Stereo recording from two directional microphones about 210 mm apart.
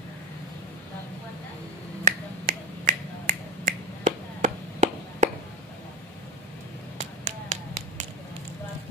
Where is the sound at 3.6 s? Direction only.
40° right (ahead or behind).